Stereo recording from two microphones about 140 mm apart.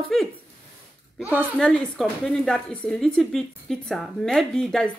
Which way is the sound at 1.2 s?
15° right (ahead or behind).